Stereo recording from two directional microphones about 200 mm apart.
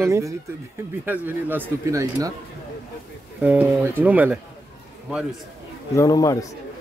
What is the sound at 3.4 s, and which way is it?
Speech, 10° right (ahead or behind).